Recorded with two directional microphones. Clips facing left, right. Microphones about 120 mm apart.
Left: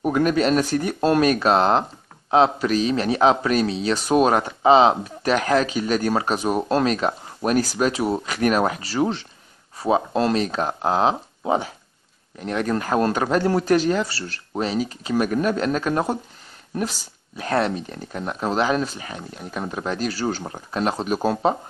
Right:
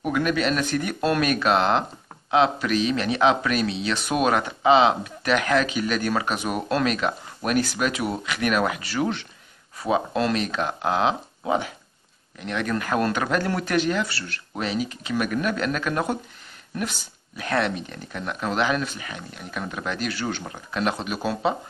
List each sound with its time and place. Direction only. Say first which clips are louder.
0.0 s speech: left 4 dB; 35° left (ahead or behind)